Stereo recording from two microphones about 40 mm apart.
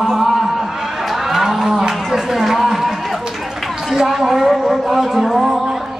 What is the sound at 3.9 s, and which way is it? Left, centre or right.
Music, centre.